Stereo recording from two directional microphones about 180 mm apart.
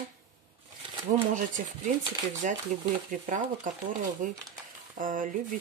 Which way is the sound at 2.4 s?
45° right (ahead or behind).